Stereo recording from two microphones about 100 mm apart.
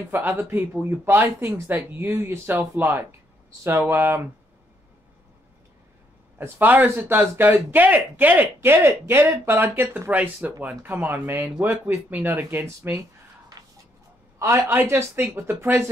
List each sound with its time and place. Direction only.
0.1 s speech: 20° right (ahead or behind)
6.3 s speech: 20° right (ahead or behind)
14.4 s speech: 25° right (ahead or behind)